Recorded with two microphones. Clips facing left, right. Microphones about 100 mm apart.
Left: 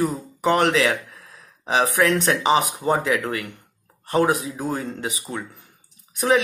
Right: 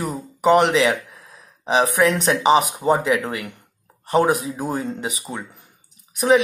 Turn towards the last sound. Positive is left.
turn(degrees=-15)  # may be behind; listen again after turning